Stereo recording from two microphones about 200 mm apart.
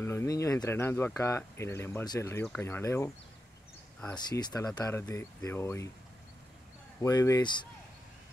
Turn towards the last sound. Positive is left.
turn(degrees=20)  # may be behind; listen again after turning